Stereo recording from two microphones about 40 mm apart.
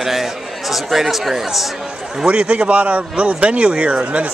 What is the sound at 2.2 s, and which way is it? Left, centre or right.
A man's voice, right.